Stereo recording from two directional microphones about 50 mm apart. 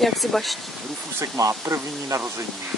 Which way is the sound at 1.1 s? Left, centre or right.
Right.